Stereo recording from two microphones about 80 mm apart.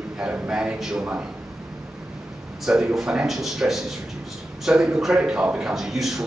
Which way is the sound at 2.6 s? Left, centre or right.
Centre.